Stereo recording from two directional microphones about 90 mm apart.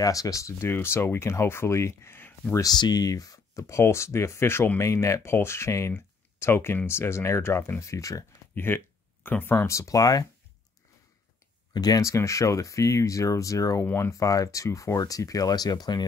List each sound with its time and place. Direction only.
0.0 s speech: 40° left (ahead or behind); by 2.6 s 20° left (ahead or behind)
2.6 s speech: 50° left (ahead or behind)
8.5 s speech: 25° left (ahead or behind); by 10.2 s 45° left (ahead or behind)
11.7 s speech: 45° left (ahead or behind)
13.8 s speech: 30° left (ahead or behind)
14.2 s speech: 40° left (ahead or behind)